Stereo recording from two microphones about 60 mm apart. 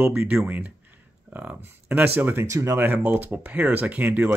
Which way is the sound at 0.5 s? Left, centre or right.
Right.